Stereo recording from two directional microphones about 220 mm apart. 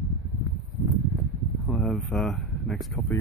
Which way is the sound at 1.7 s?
Centre (ahead or behind).